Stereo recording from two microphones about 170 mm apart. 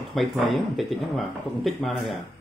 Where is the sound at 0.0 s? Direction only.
Centre (ahead or behind).